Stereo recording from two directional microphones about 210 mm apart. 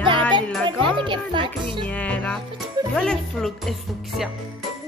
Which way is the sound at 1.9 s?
5° left (ahead or behind).